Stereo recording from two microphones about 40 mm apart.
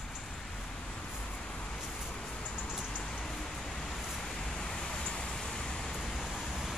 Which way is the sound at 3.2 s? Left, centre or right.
Centre.